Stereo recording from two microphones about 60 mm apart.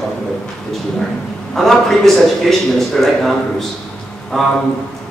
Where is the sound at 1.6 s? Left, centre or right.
Centre.